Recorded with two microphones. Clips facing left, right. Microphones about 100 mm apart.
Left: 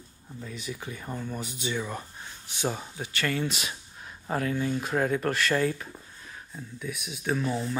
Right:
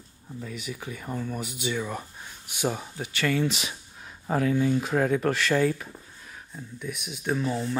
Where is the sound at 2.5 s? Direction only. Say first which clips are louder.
Right 2 dB; 15° right (ahead or behind).